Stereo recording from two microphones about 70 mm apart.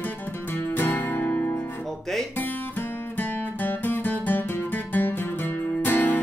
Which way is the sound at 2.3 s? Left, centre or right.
Left.